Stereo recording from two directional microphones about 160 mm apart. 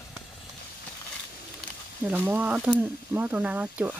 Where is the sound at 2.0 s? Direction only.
10° right (ahead or behind).